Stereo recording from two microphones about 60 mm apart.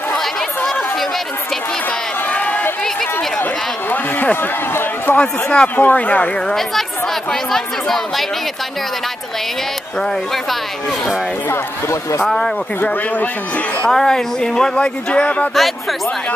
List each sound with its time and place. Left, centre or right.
2.2 s run: left
3.9 s a man's voice: left
6.4 s speech: centre
9.9 s speech: centre
11.4 s speech: left
12.3 s speech: centre
12.8 s a man's voice: left
13.8 s speech: centre
15.2 s a man's voice: left